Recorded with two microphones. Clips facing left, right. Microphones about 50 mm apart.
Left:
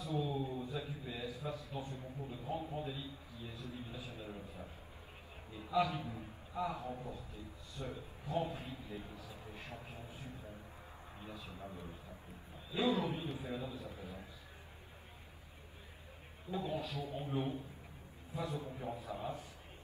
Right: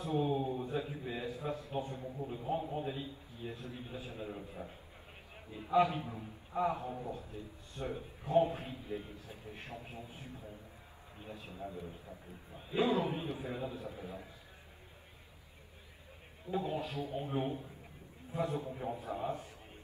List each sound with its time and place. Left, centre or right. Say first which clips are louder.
0.0 s a sound: right 5 dB; right
11.2 s a man's voice: right 2 dB; right
12.7 s a man's voice: right 3 dB; right
16.7 s a man's voice: right 3 dB; right
17.2 s a man's voice: right 2 dB; right
18.3 s a man's voice: right 5 dB; right
18.7 s a man's voice: right 4 dB; centre
18.9 s a man's voice: right 4 dB; right